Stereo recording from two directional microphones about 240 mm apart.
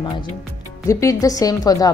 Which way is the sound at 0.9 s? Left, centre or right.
Centre.